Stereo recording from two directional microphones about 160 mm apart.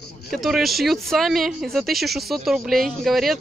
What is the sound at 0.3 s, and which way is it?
Speech, centre (ahead or behind).